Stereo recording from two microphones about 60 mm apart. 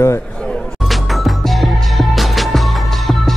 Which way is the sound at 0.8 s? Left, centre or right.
Centre.